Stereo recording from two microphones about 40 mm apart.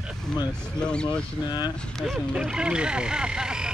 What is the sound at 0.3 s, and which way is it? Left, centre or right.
Speech, left.